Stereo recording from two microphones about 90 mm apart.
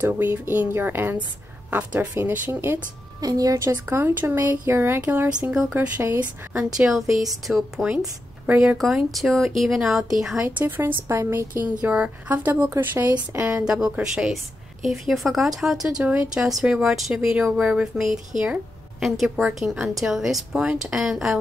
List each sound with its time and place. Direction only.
0.0 s speech: 25° right (ahead or behind)
3.2 s a woman's voice: 45° right (ahead or behind)
3.7 s speech: 20° right (ahead or behind)
5.4 s speech: 10° right (ahead or behind)
5.8 s speech: 20° right (ahead or behind)
6.9 s speech: centre (ahead or behind)
8.7 s speech: centre (ahead or behind)
10.6 s speech: 25° right (ahead or behind)
11.6 s speech: 15° right (ahead or behind)
13.7 s speech: 10° right (ahead or behind)
16.0 s speech: 20° right (ahead or behind)
16.4 s speech: 5° right (ahead or behind)